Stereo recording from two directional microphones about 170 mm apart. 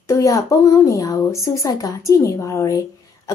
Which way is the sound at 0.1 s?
20° left (ahead or behind).